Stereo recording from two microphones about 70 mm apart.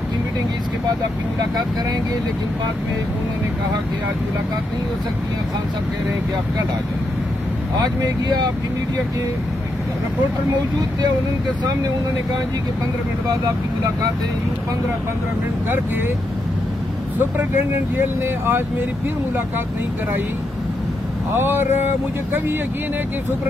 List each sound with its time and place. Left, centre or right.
17.4 s speech: right
21.4 s speech: right